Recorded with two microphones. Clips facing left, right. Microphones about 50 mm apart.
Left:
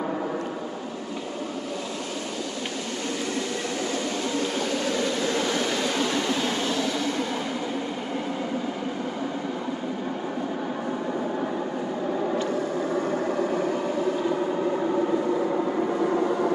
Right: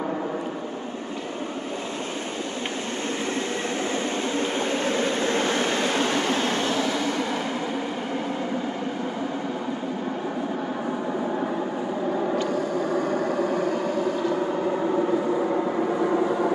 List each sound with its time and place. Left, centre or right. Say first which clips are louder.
0.0 s vehicle: even; centre
4.8 s a sound: right 2 dB; right
13.2 s vehicle: right 1 dB; centre